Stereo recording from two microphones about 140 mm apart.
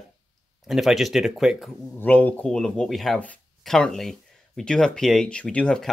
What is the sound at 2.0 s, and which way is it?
Speech, 10° left (ahead or behind).